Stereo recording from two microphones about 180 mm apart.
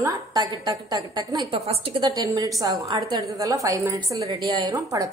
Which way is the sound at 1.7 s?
30° right (ahead or behind).